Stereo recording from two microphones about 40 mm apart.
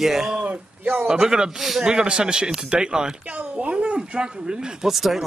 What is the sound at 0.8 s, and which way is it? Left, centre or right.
Speech, right.